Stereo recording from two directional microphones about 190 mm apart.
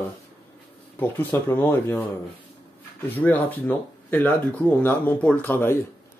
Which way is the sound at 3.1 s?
10° left (ahead or behind).